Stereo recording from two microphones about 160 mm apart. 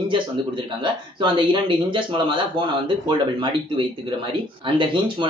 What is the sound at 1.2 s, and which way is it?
Speech, 30° right (ahead or behind).